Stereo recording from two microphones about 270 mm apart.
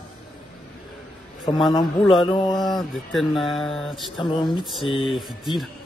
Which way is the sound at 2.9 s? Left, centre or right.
Centre.